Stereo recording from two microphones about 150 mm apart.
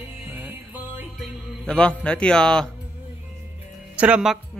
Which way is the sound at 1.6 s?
5° left (ahead or behind).